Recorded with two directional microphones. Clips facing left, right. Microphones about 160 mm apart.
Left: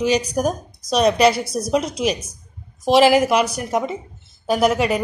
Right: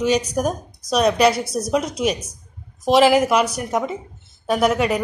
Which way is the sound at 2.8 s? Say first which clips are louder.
Left 1 dB; centre (ahead or behind).